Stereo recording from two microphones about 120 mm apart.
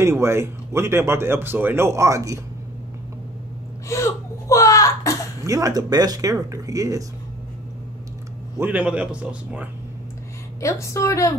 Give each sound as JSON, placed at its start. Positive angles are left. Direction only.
{"t": 0.0, "sound": "speech", "side_deg": -20}
{"t": 3.9, "sound": "a sound", "side_deg": 25}
{"t": 5.4, "sound": "speech", "side_deg": -30}
{"t": 8.5, "sound": "speech", "side_deg": -10}
{"t": 10.6, "sound": "a woman's voice", "side_deg": 25}